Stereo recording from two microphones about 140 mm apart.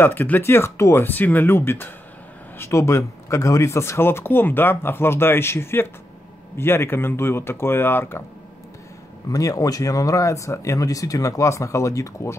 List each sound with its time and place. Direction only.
0.0 s speech: 15° left (ahead or behind)
9.3 s speech: 25° left (ahead or behind)